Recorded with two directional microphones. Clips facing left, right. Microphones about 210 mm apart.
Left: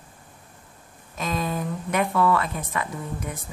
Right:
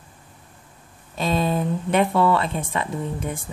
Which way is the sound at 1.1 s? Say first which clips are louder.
Right 5 dB; 30° right (ahead or behind).